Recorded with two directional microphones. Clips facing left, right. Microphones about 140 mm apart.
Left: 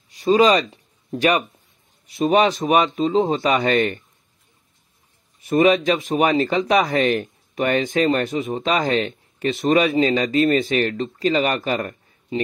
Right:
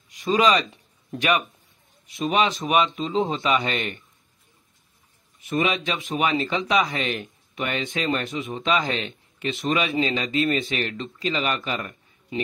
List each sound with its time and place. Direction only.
0.1 s speech: 35° left (ahead or behind)
5.4 s speech: 40° left (ahead or behind)
12.3 s a man's voice: 30° left (ahead or behind)